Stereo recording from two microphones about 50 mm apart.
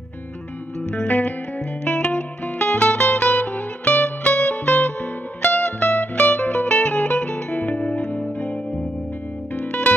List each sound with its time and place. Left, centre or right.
0.7 s music: left
9.6 s music: left